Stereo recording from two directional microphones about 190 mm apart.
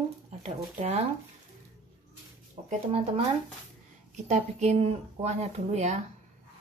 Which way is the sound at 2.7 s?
35° right (ahead or behind).